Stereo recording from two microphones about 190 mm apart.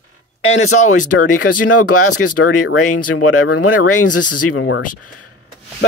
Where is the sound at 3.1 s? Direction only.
90° left.